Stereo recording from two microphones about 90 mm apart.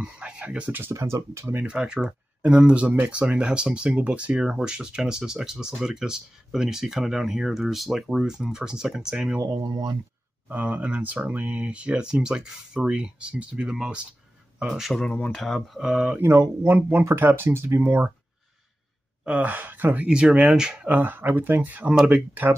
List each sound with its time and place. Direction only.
0.0 s speech: 15° right (ahead or behind)
0.9 s speech: 35° right (ahead or behind); by 9.4 s 10° right (ahead or behind)
9.5 s speech: 50° right (ahead or behind)
10.5 s speech: 15° right (ahead or behind); by 15.0 s centre (ahead or behind)
15.0 s speech: 15° left (ahead or behind)
15.3 s speech: 5° left (ahead or behind); by 16.2 s 10° right (ahead or behind)
16.2 s speech: 25° right (ahead or behind)
19.2 s speech: 15° right (ahead or behind)
20.9 s speech: 20° right (ahead or behind)